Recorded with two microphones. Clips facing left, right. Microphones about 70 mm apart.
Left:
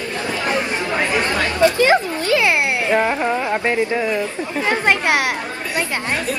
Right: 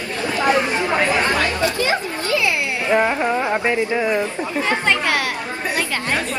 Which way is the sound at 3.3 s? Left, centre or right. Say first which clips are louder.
Even; centre.